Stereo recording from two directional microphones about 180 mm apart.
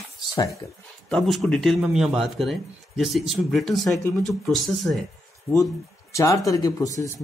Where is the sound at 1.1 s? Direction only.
Centre (ahead or behind).